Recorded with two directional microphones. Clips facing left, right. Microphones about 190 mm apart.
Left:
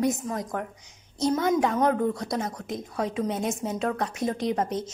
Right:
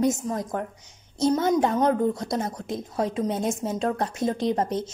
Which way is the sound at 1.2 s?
25° right (ahead or behind).